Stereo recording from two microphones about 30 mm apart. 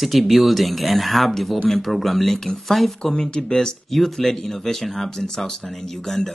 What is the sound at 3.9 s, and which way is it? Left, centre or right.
Speech, centre.